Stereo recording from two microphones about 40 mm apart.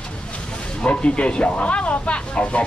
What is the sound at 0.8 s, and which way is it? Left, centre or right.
Speech, left.